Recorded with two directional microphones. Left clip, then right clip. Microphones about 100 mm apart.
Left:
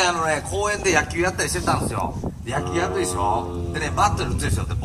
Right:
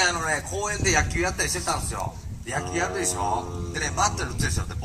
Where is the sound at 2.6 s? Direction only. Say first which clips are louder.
Left 4 dB; 20° right (ahead or behind).